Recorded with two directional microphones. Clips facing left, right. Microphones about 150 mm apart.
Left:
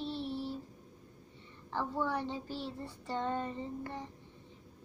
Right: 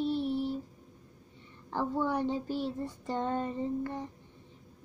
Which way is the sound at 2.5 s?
15° right (ahead or behind).